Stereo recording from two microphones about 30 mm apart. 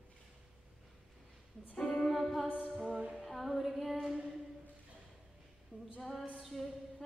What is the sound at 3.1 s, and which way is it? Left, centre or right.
Female singing, centre.